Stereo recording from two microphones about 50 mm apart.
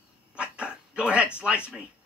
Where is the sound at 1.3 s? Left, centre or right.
Right.